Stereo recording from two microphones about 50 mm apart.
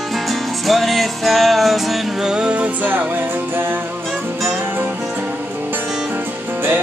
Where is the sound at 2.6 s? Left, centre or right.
Right.